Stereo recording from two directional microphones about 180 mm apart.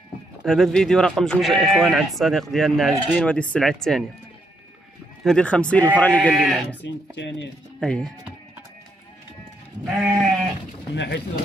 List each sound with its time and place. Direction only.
0.4 s speech: centre (ahead or behind)
5.2 s speech: 5° left (ahead or behind)
6.8 s speech: 80° left
7.8 s speech: 5° left (ahead or behind)
9.8 s speech: centre (ahead or behind)
11.0 s speech: 75° left (ahead or behind)